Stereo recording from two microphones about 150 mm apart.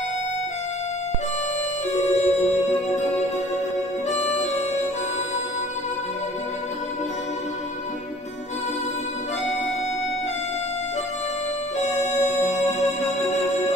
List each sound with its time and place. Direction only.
2.0 s music: 50° left (ahead or behind)
11.8 s music: 50° left (ahead or behind)